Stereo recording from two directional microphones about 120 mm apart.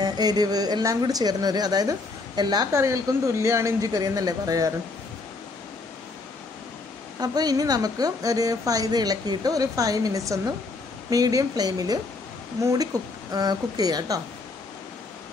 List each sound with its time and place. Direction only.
0.0 s a woman's voice: 35° right (ahead or behind)
7.2 s a woman's voice: 35° right (ahead or behind)